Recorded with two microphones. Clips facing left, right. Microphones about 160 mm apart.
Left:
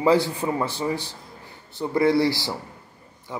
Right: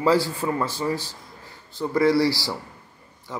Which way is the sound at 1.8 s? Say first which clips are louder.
Even; 20° left (ahead or behind).